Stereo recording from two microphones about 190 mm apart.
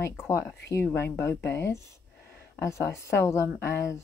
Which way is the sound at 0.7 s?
15° left (ahead or behind).